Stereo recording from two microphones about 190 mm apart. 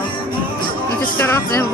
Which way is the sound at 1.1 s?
10° left (ahead or behind).